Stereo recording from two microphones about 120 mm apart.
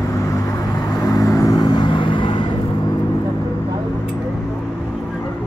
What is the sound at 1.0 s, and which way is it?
Vehicle, 30° left (ahead or behind).